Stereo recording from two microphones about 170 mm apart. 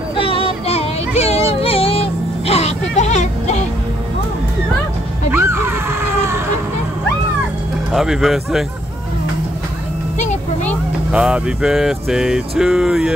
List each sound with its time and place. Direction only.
0.2 s music: 30° left (ahead or behind)
5.3 s dog: 15° right (ahead or behind)
7.9 s speech: centre (ahead or behind)
11.1 s speech: 5° right (ahead or behind)